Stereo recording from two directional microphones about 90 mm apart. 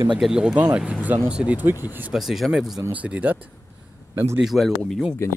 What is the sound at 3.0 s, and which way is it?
Speech, 20° right (ahead or behind).